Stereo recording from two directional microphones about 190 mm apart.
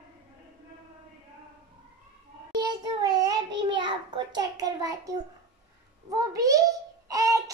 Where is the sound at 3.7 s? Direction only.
25° right (ahead or behind).